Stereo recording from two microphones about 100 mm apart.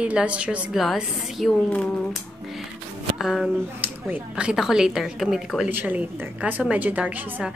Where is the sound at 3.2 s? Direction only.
5° right (ahead or behind).